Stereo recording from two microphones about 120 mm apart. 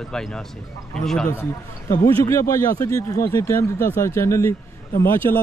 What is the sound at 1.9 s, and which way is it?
Speech, 25° left (ahead or behind).